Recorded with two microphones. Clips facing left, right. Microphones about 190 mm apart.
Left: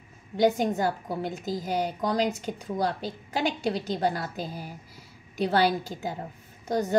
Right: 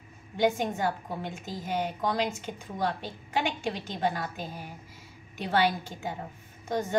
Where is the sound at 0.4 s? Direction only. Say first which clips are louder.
Left 3 dB; 40° left (ahead or behind).